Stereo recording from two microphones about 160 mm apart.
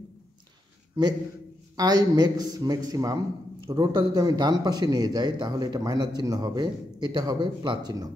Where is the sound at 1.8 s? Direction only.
25° right (ahead or behind).